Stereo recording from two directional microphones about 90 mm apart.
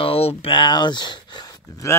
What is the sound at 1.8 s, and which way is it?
Speech, 35° left (ahead or behind).